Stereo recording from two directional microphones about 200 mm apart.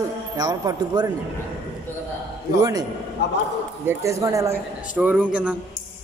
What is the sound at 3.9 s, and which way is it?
A man's voice, 15° right (ahead or behind).